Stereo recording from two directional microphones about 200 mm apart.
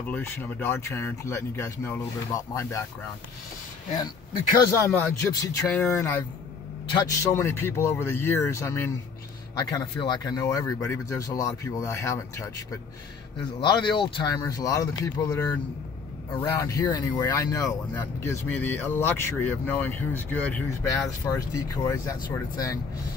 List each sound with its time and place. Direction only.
0.0 s speech: 10° left (ahead or behind)
4.8 s speech: 15° left (ahead or behind)
21.5 s speech: 15° left (ahead or behind)